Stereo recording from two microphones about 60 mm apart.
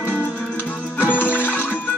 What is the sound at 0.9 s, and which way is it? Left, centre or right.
Music, left.